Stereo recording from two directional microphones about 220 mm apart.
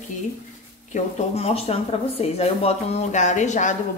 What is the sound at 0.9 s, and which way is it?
Speech, 30° left (ahead or behind).